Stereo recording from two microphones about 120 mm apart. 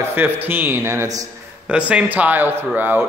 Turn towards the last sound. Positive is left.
turn(degrees=-15)  # may be behind; listen again after turning